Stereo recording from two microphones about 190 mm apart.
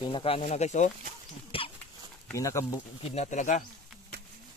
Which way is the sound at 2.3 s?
15° left (ahead or behind).